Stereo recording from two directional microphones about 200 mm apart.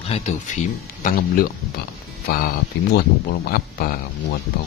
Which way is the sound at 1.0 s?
45° left (ahead or behind).